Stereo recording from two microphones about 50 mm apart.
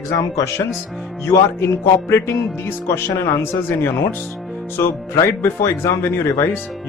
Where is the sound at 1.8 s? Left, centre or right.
Left.